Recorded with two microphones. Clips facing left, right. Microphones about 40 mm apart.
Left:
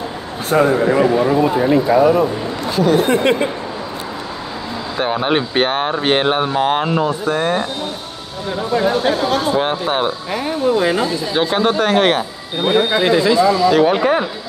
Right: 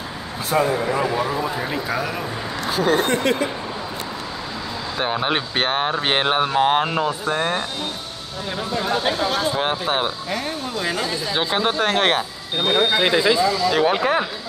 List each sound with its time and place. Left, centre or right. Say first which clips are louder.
0.5 s a man's voice: left 6 dB; left
0.9 s speech: left 8 dB; left
3.1 s speech: left 5 dB; left
4.9 s speech: left 5 dB; centre
9.0 s speech: left 5 dB; centre
10.3 s speech: left 9 dB; centre
11.3 s speech: left 5 dB; centre
13.0 s speech: left 4 dB; centre
13.4 s speech: left 6 dB; centre
13.7 s speech: left 5 dB; centre